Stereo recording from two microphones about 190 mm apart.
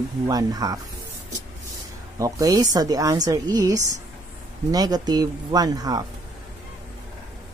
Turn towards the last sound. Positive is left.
turn(degrees=-20)  # may be behind; listen again after turning